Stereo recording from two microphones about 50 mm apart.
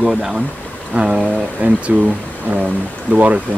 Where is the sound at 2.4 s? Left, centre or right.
Right.